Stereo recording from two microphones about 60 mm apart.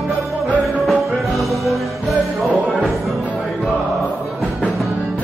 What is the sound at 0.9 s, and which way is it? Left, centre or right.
Music, centre.